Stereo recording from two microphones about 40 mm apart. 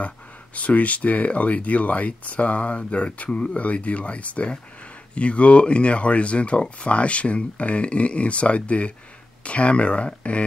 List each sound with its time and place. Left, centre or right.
0.6 s speech: left